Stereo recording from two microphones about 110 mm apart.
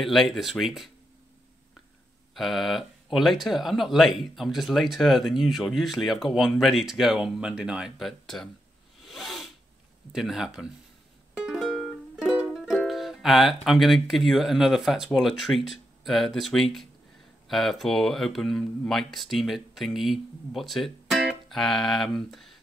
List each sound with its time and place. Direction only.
0.0 s speech: centre (ahead or behind)
2.3 s speech: centre (ahead or behind)
9.0 s a sound: centre (ahead or behind)
10.1 s speech: 5° right (ahead or behind)
11.3 s music: 5° right (ahead or behind)
12.5 s speech: centre (ahead or behind)